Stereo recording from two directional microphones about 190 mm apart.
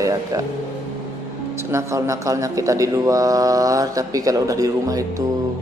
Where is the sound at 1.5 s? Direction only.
15° right (ahead or behind).